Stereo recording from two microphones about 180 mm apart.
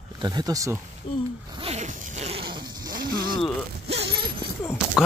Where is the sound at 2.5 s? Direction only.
25° right (ahead or behind).